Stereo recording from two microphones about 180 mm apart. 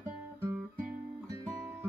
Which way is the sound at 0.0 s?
15° right (ahead or behind).